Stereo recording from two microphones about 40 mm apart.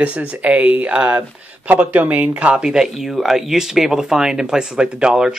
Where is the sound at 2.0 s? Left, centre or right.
Right.